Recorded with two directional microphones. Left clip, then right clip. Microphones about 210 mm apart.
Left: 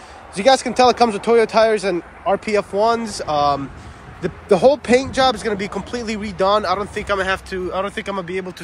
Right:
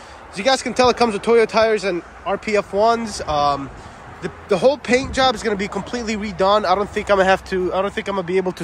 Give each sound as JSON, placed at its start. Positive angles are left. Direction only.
{"t": 0.4, "sound": "speech", "side_deg": -10}